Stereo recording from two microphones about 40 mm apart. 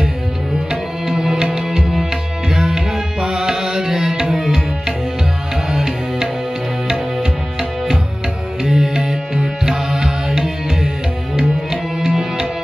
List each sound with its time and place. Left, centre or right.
0.7 s music: centre
5.7 s music: centre
8.6 s music: centre